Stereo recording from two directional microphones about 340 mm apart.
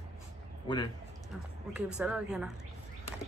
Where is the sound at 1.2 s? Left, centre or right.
Centre.